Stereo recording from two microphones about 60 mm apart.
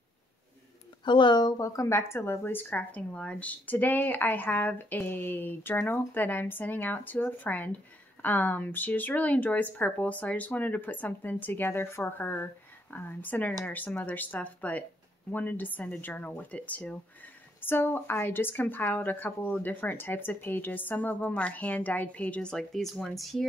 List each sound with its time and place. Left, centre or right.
1.6 s a woman's voice: left; by 22.7 s centre
22.7 s speech: centre